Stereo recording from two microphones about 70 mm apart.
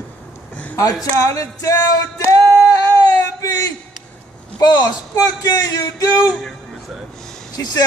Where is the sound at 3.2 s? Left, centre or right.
Left.